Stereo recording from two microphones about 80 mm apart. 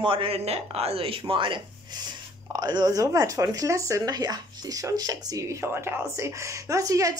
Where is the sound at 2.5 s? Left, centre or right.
Right.